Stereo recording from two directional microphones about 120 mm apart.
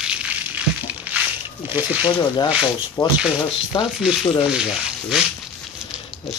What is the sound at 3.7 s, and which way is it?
Sizzle, 40° left (ahead or behind).